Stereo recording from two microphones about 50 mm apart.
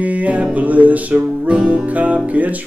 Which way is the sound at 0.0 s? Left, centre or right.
Right.